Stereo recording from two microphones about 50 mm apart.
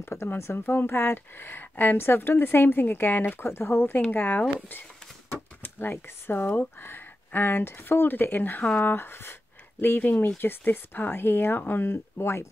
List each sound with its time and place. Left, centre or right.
0.1 s speech: left
0.7 s a woman's voice: left